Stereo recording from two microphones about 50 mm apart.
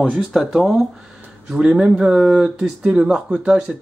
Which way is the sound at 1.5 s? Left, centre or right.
Centre.